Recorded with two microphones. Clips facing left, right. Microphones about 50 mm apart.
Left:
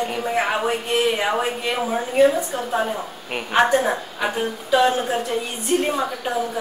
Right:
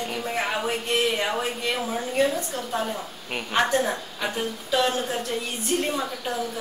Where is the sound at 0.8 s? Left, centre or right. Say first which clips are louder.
Left 2 dB; centre.